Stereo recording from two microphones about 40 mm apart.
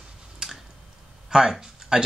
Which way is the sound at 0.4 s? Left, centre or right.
Centre.